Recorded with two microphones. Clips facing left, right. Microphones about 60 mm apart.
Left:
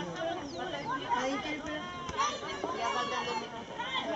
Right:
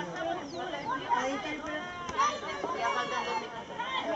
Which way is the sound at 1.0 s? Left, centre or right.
Centre.